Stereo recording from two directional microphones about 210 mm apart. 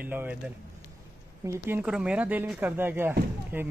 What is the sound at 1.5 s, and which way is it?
Speech, 10° right (ahead or behind).